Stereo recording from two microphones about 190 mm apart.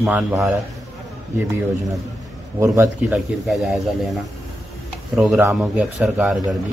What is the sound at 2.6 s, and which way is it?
Speech, 15° right (ahead or behind).